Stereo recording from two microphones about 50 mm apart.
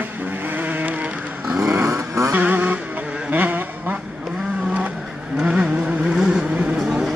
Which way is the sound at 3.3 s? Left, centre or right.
Right.